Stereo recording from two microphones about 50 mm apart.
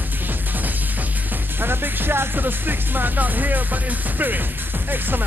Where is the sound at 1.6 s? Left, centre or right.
Right.